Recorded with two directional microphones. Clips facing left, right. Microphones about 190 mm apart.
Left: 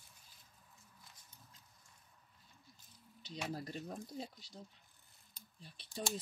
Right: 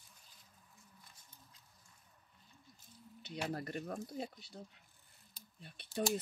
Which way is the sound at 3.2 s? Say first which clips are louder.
Right 2 dB; 60° right (ahead or behind).